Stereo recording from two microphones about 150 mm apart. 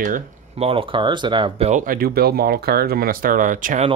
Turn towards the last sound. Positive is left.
turn(degrees=-60)  # may be behind; listen again after turning